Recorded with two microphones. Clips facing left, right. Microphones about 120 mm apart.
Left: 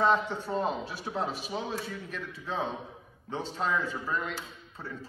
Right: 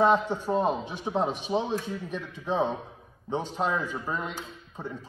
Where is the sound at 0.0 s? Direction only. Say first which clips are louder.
Right 4 dB; 15° right (ahead or behind).